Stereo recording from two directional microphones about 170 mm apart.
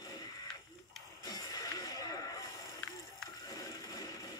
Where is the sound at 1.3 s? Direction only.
20° left (ahead or behind).